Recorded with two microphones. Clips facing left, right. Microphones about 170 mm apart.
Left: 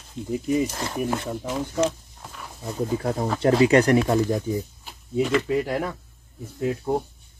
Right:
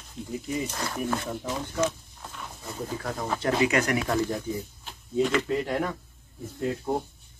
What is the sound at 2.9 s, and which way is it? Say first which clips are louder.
Speech: left 5 dB; 30° left (ahead or behind).